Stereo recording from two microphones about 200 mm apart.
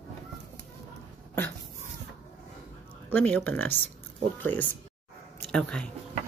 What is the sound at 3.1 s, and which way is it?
Speech, 10° left (ahead or behind).